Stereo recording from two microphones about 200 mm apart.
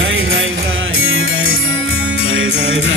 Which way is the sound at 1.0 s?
80° right.